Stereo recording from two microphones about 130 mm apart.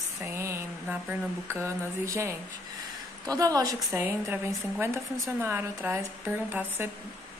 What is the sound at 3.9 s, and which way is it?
A woman's voice, 15° right (ahead or behind).